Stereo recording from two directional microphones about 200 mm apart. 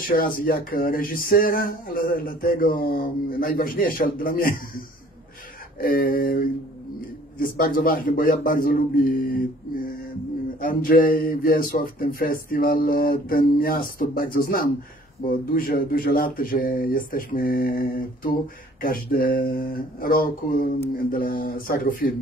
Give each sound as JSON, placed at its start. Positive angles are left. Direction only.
{"t": 0.0, "sound": "speech", "side_deg": 45}
{"t": 5.8, "sound": "speech", "side_deg": 45}
{"t": 10.6, "sound": "speech", "side_deg": 45}